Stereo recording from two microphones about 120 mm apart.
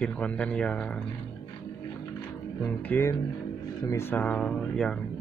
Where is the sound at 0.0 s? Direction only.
10° left (ahead or behind).